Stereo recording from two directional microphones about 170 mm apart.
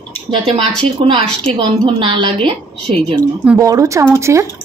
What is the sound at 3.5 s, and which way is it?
Speech, 20° right (ahead or behind).